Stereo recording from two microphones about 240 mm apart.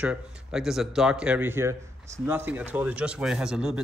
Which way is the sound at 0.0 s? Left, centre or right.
Centre.